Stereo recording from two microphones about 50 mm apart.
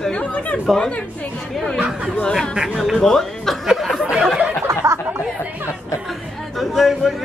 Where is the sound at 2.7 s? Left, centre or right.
Centre.